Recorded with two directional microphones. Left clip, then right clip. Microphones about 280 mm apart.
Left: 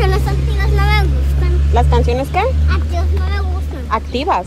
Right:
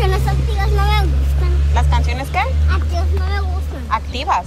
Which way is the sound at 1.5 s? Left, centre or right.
Centre.